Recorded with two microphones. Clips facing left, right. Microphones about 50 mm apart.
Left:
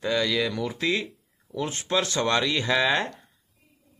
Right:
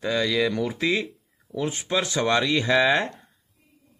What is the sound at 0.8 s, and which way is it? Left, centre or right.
A man's voice, centre.